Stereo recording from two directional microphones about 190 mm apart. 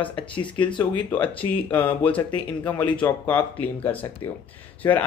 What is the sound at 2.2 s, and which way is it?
Speech, 25° left (ahead or behind).